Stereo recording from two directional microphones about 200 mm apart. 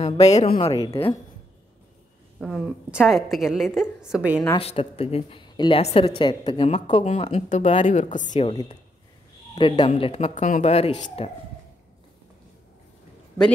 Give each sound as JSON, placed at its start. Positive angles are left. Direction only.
{"t": 0.0, "sound": "a woman's voice", "side_deg": 35}
{"t": 0.6, "sound": "a woman's voice", "side_deg": 20}
{"t": 2.4, "sound": "a woman's voice", "side_deg": 0}
{"t": 4.6, "sound": "a woman's voice", "side_deg": 30}
{"t": 8.5, "sound": "a woman's voice", "side_deg": 25}